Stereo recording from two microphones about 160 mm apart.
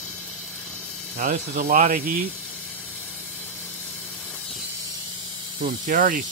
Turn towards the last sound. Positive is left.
turn(degrees=-60)  # may be behind; listen again after turning